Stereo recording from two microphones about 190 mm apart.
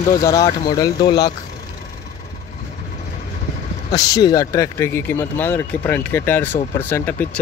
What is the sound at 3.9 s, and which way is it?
Speech, 20° left (ahead or behind).